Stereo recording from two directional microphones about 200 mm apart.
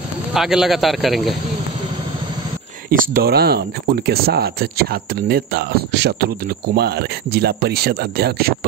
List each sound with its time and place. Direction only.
0.3 s a man's voice: centre (ahead or behind)
2.9 s speech: 45° right (ahead or behind)